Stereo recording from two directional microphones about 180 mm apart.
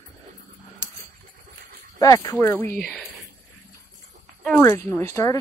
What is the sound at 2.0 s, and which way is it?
Speech, 20° left (ahead or behind).